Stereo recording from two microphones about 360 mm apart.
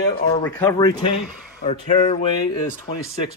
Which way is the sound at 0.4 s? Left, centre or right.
Centre.